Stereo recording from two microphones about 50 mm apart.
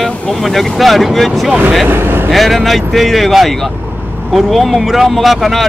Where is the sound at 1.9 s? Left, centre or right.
Right.